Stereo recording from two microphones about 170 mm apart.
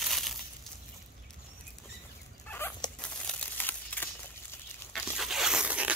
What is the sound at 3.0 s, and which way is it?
Crumpling, 5° left (ahead or behind).